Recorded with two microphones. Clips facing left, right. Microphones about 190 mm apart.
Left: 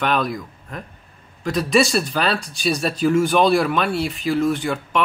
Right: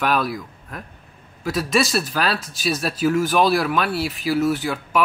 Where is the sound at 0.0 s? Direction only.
5° right (ahead or behind).